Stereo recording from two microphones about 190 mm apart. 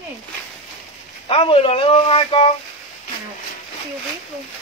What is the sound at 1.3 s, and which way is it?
Speech, 30° left (ahead or behind).